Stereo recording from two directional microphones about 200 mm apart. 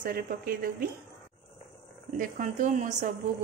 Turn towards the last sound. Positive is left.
turn(degrees=-40)  # may be behind; listen again after turning